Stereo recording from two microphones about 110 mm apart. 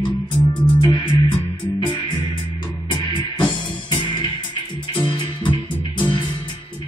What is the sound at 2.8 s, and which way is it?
Music, 40° left (ahead or behind).